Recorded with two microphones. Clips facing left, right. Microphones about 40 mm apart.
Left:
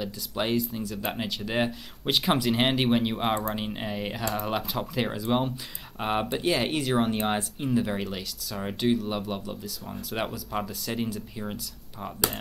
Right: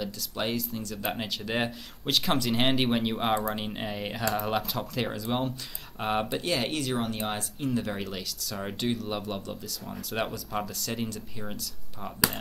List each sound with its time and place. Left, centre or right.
0.0 s speech: centre
2.0 s speech: centre